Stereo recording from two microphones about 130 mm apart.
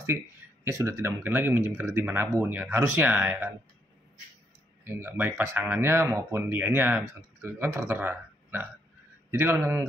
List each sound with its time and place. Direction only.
0.7 s speech: 20° right (ahead or behind)
4.8 s speech: 15° right (ahead or behind)